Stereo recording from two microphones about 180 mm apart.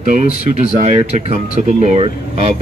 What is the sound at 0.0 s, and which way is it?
Speech, 45° right (ahead or behind).